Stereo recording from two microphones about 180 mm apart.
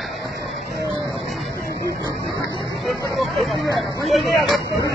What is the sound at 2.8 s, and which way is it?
Hubbub, centre (ahead or behind).